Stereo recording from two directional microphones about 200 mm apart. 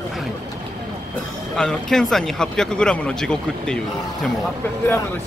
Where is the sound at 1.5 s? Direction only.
Centre (ahead or behind).